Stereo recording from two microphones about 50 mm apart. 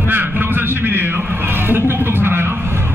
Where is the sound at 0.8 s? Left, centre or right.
Right.